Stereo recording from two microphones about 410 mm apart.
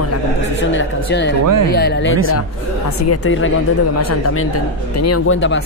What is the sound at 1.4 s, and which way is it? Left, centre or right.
Speech, right.